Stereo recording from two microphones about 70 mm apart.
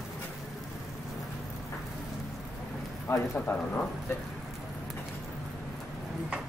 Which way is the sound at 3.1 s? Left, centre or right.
Left.